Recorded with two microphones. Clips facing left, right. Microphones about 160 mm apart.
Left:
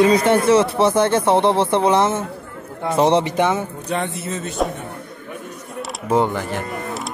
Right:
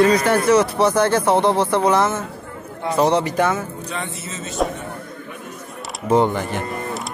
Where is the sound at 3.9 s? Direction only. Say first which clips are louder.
Left 5 dB; 60° left (ahead or behind).